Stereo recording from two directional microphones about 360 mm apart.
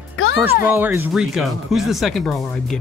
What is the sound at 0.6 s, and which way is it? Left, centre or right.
Speech, centre.